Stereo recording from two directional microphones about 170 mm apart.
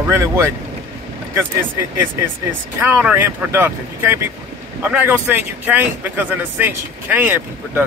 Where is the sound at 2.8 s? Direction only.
10° right (ahead or behind).